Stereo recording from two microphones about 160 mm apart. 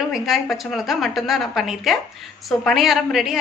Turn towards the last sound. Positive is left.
turn(degrees=0)  # may be behind; listen again after turning